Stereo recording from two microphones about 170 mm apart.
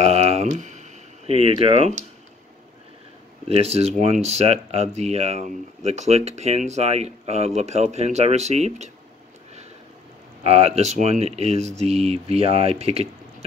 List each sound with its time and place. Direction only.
0.0 s a sound: 40° right (ahead or behind)
3.4 s speech: 35° right (ahead or behind)
10.4 s speech: 35° right (ahead or behind)